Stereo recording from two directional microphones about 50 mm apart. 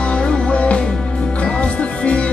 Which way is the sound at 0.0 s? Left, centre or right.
Centre.